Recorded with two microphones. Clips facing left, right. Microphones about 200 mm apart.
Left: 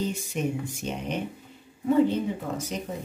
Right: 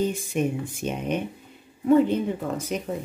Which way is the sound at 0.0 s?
55° right (ahead or behind).